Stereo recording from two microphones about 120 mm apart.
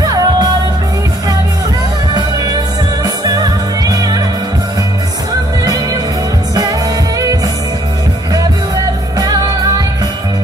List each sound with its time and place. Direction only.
0.0 s music: 35° right (ahead or behind)
2.1 s music: 30° right (ahead or behind)
9.2 s music: 30° right (ahead or behind)